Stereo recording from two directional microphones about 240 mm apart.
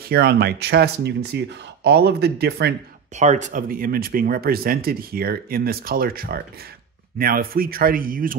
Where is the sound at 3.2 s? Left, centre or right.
Right.